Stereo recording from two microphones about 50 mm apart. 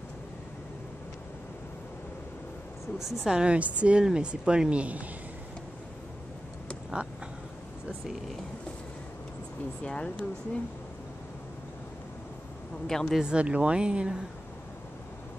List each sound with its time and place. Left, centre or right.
3.0 s a woman's voice: centre
3.3 s speech: right
9.8 s speech: left
12.8 s a woman's voice: centre
13.2 s speech: right